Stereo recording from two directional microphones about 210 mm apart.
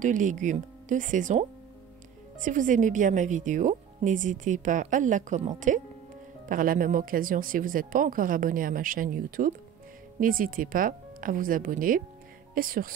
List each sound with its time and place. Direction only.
0.0 s a woman's voice: 35° right (ahead or behind)
2.4 s a woman's voice: 40° right (ahead or behind)